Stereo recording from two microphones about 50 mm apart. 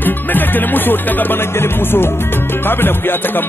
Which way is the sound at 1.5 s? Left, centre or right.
Left.